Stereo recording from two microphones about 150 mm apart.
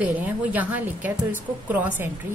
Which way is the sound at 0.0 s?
10° right (ahead or behind).